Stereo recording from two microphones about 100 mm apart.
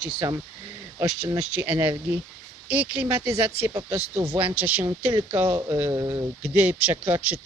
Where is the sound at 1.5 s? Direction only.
20° right (ahead or behind).